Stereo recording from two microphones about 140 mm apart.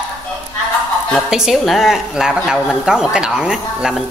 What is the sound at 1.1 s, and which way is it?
A woman's voice, centre (ahead or behind).